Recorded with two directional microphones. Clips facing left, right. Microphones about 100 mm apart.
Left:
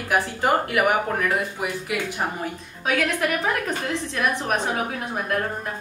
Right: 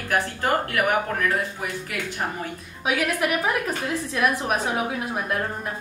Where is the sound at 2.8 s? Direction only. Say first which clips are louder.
Left 1 dB; 10° right (ahead or behind).